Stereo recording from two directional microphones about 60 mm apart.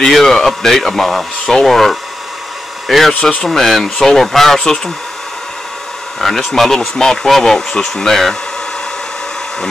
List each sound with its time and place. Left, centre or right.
0.0 s speech: centre
3.2 s speech: centre
3.4 s speech: centre
6.2 s speech: centre